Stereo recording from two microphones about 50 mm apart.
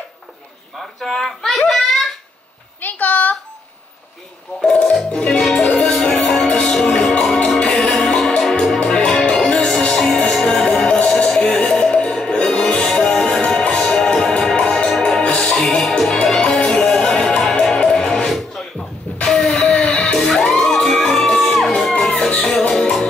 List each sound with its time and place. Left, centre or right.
0.7 s speech: centre
1.7 s a sound: centre
2.8 s a sound: left
4.6 s speech: centre
5.5 s music: centre
15.2 s music: left
15.7 s music: centre
19.1 s a sound: centre
19.8 s music: centre